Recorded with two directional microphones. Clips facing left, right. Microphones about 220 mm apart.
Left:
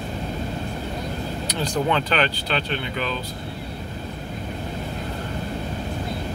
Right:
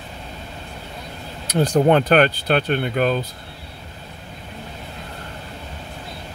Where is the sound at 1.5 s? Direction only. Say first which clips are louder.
Right 8 dB; 50° right (ahead or behind).